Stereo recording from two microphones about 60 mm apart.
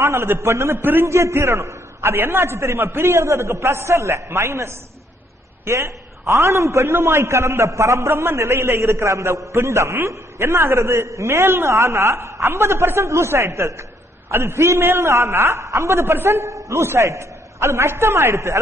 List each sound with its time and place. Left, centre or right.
0.0 s a man's voice: right